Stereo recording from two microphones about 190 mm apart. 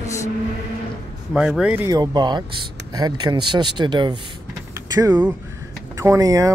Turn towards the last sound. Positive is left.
turn(degrees=-15)  # may be behind; listen again after turning